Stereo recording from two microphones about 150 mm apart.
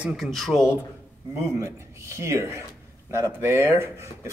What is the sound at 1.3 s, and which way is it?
A man's voice, 20° right (ahead or behind).